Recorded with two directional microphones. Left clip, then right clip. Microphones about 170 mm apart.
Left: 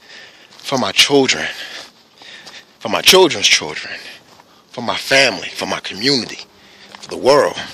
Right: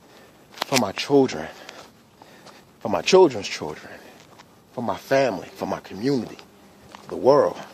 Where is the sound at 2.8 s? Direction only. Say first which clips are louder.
Left 6 dB; centre (ahead or behind).